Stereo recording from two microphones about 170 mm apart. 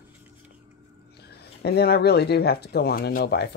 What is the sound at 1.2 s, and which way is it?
Speech, 70° left (ahead or behind).